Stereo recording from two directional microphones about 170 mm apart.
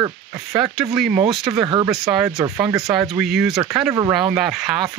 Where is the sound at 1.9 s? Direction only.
Centre (ahead or behind).